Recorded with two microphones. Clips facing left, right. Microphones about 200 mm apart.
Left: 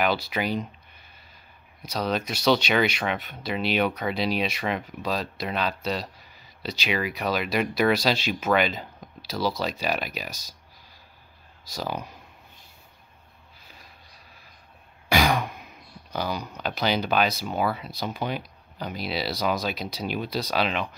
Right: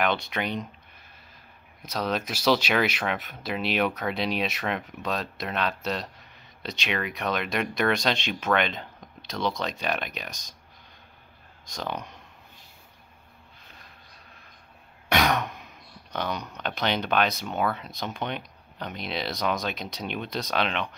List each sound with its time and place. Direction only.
0.0 s speech: centre (ahead or behind)
11.6 s speech: 5° left (ahead or behind)
15.0 s speech: centre (ahead or behind)